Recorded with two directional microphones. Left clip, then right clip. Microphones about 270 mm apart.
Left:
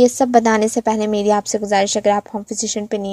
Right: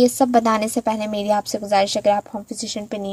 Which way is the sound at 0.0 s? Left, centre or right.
Left.